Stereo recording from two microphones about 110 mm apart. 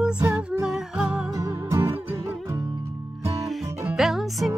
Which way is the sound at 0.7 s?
5° right (ahead or behind).